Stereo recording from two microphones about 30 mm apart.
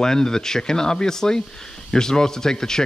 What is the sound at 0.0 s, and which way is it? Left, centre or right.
Speech, centre.